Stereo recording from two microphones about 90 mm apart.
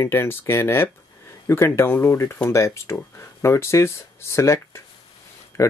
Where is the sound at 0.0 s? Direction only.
25° left (ahead or behind).